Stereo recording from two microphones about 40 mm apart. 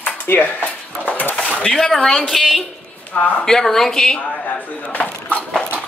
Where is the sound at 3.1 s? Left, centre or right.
Left.